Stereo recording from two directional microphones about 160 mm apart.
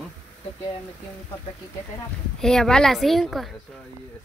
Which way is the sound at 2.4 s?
5° left (ahead or behind).